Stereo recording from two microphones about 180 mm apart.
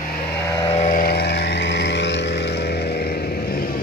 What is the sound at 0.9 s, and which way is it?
Vehicle, 60° left (ahead or behind).